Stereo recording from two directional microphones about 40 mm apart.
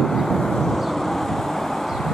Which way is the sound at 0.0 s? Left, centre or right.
Centre.